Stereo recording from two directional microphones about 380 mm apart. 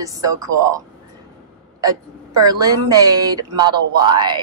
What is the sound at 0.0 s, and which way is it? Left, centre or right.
A woman's voice, centre.